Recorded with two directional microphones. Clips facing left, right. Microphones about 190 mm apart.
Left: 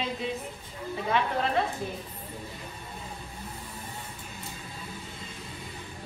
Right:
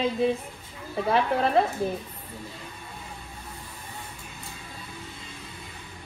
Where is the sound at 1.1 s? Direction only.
35° right (ahead or behind).